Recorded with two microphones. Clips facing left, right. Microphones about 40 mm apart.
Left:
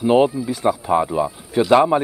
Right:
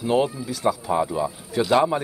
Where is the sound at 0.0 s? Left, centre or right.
Left.